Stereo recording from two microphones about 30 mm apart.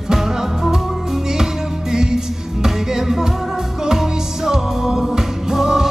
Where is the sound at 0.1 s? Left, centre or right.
Centre.